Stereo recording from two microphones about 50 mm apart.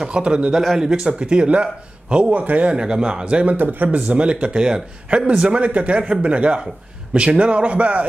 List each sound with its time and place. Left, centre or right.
0.0 s speech: centre
0.5 s speech: centre; by 2.7 s right
2.7 s speech: centre
3.5 s speech: right